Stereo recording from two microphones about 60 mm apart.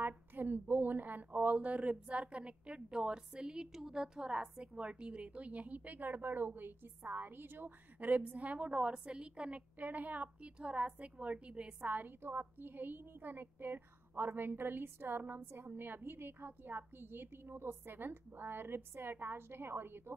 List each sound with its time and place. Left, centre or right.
0.0 s a woman's voice: right; by 9.6 s centre
9.8 s a woman's voice: right
11.8 s a woman's voice: right